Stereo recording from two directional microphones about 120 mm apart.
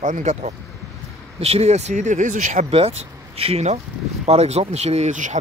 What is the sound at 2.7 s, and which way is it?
Speech, 60° right (ahead or behind).